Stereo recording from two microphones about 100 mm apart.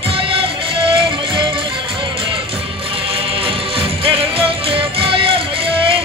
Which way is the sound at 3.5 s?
65° right (ahead or behind).